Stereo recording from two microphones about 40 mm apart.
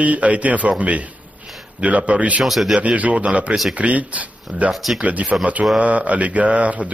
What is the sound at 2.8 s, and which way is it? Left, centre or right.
A man's voice, right.